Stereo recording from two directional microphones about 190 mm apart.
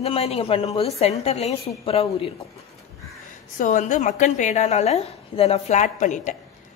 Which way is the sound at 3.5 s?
40° left (ahead or behind).